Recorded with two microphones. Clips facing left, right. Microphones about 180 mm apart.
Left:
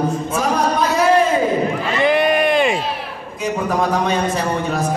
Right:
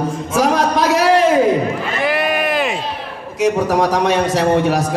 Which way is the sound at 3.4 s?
75° right (ahead or behind).